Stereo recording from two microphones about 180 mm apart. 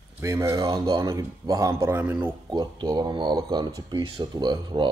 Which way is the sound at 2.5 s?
25° right (ahead or behind).